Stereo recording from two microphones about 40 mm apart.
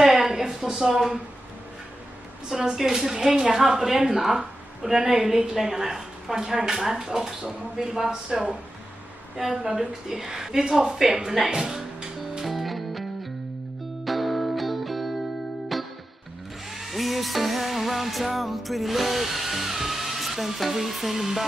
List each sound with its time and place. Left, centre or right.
0.0 s a sound: centre
2.5 s a woman's voice: centre
4.1 s a woman's voice: centre
5.0 s a woman's voice: right
9.8 s a woman's voice: centre
11.4 s music: centre
12.4 s music: centre